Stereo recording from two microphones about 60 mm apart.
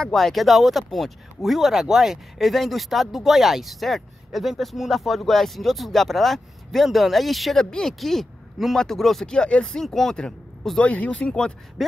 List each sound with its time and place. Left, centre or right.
0.0 s speech: centre
10.8 s speech: left